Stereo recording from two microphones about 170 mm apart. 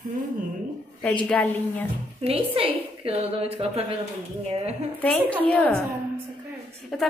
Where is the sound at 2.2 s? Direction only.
35° right (ahead or behind).